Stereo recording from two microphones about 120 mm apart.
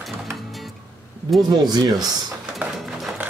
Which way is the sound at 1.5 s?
35° right (ahead or behind).